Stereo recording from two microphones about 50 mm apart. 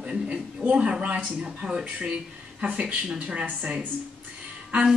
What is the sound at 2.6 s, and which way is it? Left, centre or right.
Speech, right.